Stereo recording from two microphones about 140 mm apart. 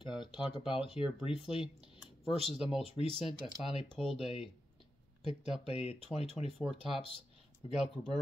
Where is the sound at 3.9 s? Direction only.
Centre (ahead or behind).